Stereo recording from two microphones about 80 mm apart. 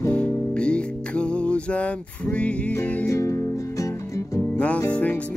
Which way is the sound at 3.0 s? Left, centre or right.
Left.